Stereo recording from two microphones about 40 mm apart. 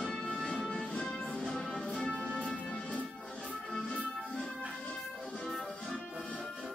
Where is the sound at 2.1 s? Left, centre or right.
Left.